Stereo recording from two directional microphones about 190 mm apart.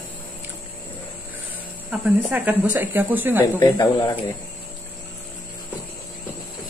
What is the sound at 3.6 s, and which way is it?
Speech, 20° left (ahead or behind).